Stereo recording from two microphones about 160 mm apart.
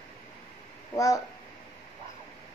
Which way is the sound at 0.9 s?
20° left (ahead or behind).